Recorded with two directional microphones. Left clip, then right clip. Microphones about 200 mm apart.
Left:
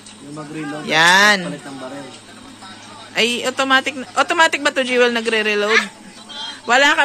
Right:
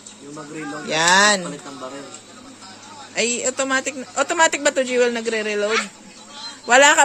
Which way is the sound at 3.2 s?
10° right (ahead or behind).